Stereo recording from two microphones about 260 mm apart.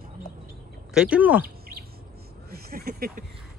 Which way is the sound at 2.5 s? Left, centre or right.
Right.